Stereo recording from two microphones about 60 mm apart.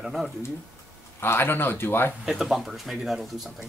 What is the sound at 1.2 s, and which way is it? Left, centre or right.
Speech, left.